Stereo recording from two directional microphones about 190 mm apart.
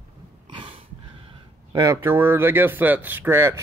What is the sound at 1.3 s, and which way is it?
Speech, 20° right (ahead or behind).